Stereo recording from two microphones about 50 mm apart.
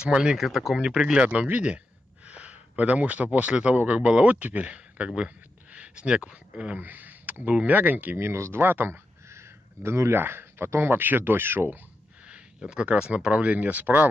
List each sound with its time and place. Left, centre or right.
0.0 s speech: centre
0.4 s speech: centre
1.2 s speech: right
6.8 s speech: right
8.2 s speech: right
8.6 s speech: right
9.3 s a sound: right
10.2 s speech: right
12.6 s speech: right